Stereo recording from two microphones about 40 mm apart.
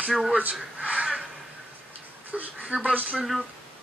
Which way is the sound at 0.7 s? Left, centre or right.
Right.